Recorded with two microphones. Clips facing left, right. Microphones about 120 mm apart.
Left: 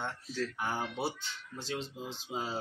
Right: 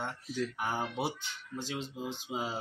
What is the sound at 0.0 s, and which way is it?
Speech, 10° right (ahead or behind).